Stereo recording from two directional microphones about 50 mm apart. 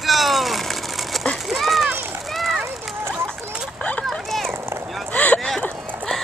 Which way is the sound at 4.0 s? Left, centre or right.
Centre.